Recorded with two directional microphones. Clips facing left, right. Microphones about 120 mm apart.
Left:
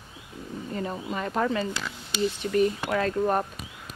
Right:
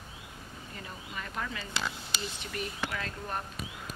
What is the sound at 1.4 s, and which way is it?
Speech, 40° left (ahead or behind).